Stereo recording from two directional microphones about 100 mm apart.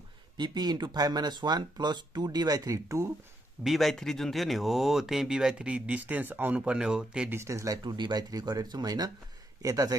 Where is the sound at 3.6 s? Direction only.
Centre (ahead or behind).